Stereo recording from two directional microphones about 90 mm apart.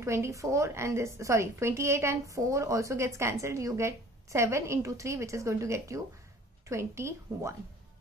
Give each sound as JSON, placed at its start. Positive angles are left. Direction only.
{"t": 0.0, "sound": "speech", "side_deg": -35}